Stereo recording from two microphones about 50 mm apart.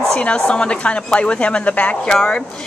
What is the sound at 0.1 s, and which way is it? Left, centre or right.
A woman's voice, left.